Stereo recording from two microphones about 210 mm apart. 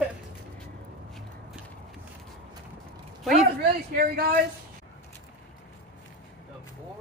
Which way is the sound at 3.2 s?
Centre (ahead or behind).